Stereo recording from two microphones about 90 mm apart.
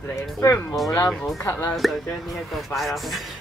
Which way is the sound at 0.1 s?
35° left (ahead or behind).